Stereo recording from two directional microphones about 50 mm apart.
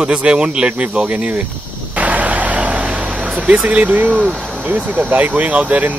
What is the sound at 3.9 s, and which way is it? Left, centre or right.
Speech, right.